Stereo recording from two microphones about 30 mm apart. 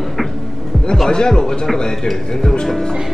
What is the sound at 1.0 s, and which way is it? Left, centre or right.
Speech, left.